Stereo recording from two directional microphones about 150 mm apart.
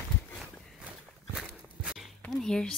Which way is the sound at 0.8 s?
10° right (ahead or behind).